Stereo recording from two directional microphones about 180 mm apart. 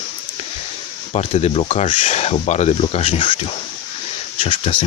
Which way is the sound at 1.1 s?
35° left (ahead or behind).